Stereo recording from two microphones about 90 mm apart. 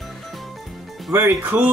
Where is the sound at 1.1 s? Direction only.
25° right (ahead or behind).